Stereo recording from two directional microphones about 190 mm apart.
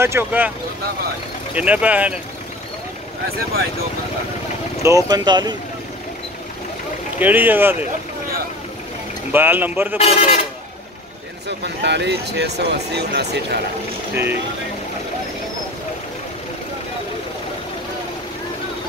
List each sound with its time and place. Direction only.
0.0 s speech: 10° right (ahead or behind)
1.5 s speech: 5° right (ahead or behind)
4.8 s speech: 20° right (ahead or behind)
7.2 s speech: 10° right (ahead or behind)
9.3 s speech: 10° right (ahead or behind)
9.9 s a man's voice: 30° left (ahead or behind)
11.4 s speech: 65° right (ahead or behind)